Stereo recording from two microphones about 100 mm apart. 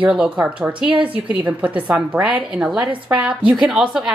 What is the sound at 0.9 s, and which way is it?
Speech, 60° right (ahead or behind).